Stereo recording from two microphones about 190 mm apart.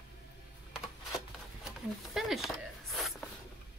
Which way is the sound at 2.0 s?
Centre (ahead or behind).